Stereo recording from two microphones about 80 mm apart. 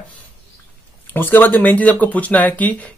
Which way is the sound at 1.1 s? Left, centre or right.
Left.